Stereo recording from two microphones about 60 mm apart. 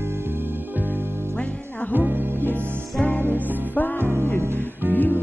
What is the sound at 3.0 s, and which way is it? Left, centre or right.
Music, left.